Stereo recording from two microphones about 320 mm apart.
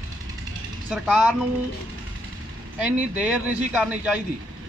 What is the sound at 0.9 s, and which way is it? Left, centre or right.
Speech, centre.